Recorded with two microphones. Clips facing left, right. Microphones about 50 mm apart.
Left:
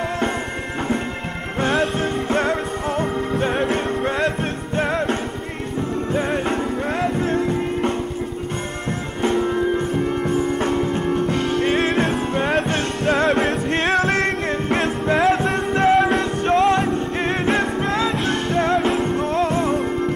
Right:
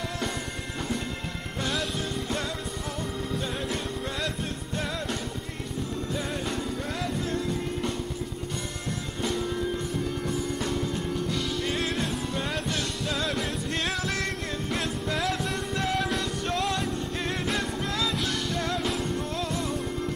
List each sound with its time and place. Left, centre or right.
1.6 s music: left
6.1 s music: left
9.2 s music: left